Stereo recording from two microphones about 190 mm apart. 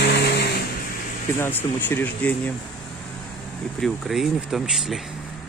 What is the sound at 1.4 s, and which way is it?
Speech, 10° left (ahead or behind).